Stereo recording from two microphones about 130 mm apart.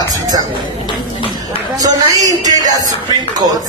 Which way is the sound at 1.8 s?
30° right (ahead or behind).